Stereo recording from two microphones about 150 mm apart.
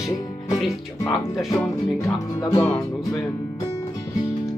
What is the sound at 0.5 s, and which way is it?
Speech, centre (ahead or behind).